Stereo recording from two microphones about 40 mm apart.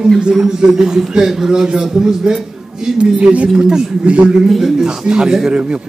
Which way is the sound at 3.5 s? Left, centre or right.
Centre.